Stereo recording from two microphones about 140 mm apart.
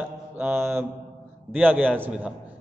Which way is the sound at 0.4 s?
15° right (ahead or behind).